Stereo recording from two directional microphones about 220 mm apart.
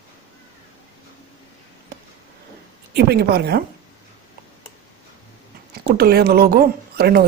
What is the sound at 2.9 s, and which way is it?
Speech, 45° right (ahead or behind).